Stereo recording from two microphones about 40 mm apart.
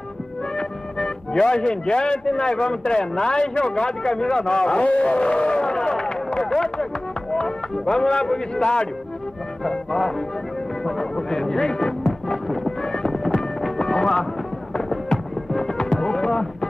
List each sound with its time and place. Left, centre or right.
0.6 s speech: centre
4.8 s a sound: left; by 6.9 s centre
7.3 s speech: centre
9.6 s music: centre